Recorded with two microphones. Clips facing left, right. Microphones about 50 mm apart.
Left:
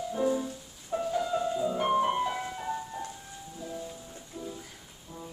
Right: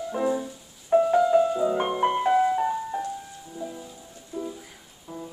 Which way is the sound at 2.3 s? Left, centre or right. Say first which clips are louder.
Right 12 dB; centre.